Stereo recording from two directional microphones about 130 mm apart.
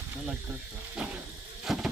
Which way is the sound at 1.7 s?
Centre (ahead or behind).